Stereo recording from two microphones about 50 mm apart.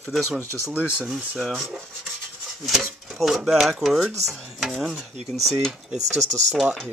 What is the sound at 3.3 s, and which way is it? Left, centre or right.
Speech, centre.